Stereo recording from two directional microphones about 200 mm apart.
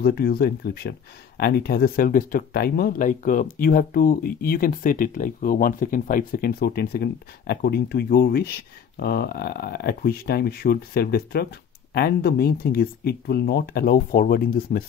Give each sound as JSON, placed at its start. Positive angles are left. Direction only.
{"t": 0.0, "sound": "speech", "side_deg": 50}